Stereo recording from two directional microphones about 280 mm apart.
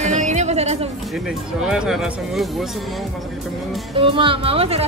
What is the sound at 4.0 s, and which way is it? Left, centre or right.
Speech, centre.